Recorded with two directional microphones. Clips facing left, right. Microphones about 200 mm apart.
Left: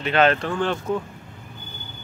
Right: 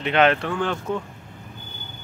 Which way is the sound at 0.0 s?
15° right (ahead or behind).